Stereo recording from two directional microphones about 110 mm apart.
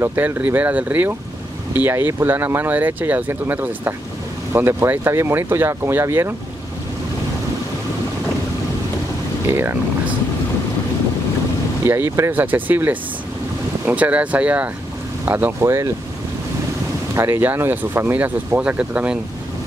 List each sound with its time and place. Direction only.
0.0 s speech: 20° right (ahead or behind)
9.5 s speech: 20° right (ahead or behind)
11.8 s speech: 20° right (ahead or behind)
17.1 s speech: 20° right (ahead or behind)